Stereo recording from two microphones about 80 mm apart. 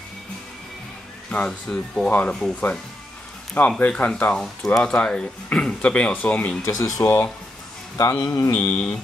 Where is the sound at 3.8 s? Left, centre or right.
Centre.